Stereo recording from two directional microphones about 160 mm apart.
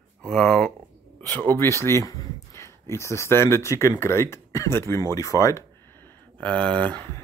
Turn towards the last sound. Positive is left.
turn(degrees=10)  # may be behind; listen again after turning